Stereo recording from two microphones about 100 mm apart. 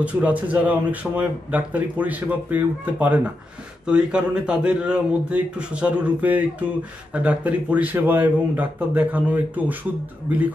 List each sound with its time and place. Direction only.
0.0 s speech: 15° right (ahead or behind)